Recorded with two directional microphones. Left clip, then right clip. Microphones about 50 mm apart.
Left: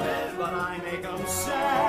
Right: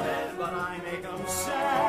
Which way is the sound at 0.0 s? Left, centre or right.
Left.